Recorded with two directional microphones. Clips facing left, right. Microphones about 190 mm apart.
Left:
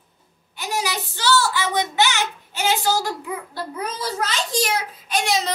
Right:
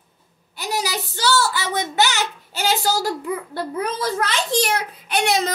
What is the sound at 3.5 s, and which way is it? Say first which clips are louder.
A child's voice: right 4 dB; 55° right (ahead or behind).